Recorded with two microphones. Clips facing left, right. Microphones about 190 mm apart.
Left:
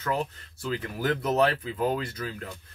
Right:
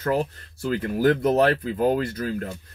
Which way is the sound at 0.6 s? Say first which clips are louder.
Right 8 dB; 50° right (ahead or behind).